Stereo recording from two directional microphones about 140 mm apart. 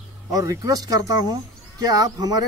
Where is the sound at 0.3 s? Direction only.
25° right (ahead or behind).